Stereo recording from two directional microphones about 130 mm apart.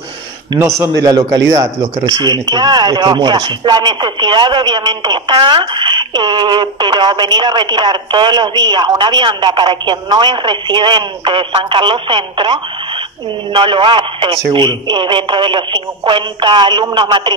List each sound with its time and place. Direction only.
0.7 s a man's voice: 25° right (ahead or behind)